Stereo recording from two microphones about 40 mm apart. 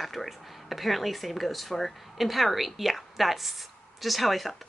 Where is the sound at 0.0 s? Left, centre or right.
Centre.